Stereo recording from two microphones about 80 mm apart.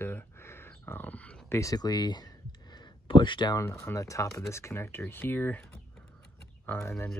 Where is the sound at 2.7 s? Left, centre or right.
Left.